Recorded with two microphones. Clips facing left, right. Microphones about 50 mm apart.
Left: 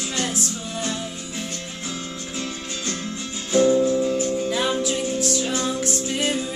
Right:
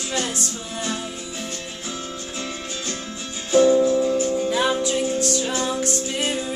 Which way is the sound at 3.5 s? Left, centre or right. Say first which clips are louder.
Right 2 dB; right.